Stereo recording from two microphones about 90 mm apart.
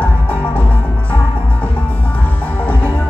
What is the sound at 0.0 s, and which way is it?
Music, 15° left (ahead or behind).